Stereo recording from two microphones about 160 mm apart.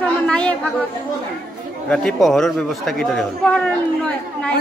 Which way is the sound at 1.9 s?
5° left (ahead or behind).